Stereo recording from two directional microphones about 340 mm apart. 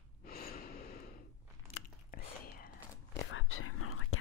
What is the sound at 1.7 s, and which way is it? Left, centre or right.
Whispering, left.